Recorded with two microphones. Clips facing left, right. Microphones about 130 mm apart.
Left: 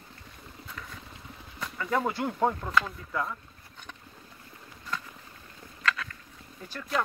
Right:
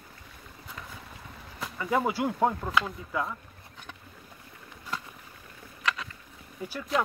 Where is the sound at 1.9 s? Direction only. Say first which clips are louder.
Right 2 dB; 5° right (ahead or behind).